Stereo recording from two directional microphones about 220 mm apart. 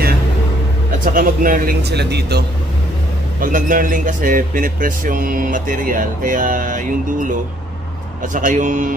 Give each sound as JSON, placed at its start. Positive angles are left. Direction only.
{"t": 1.0, "sound": "a man's voice", "side_deg": -40}